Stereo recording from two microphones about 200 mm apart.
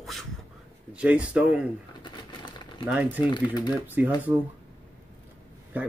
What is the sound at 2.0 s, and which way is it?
Crumpling, 20° left (ahead or behind).